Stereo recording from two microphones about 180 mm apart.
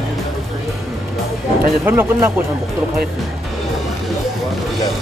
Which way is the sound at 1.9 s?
15° right (ahead or behind).